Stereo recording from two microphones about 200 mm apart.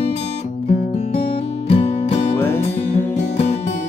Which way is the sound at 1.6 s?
30° left (ahead or behind).